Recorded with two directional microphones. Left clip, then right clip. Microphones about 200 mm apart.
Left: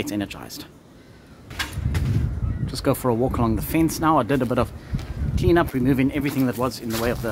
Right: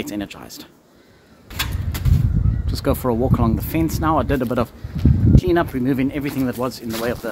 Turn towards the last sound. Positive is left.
turn(degrees=-5)  # may be behind; listen again after turning